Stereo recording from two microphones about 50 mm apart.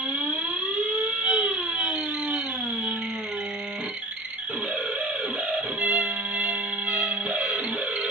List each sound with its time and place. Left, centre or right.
0.9 s theremin: centre
5.5 s music: right